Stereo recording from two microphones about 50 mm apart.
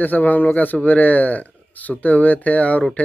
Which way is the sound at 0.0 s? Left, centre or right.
Left.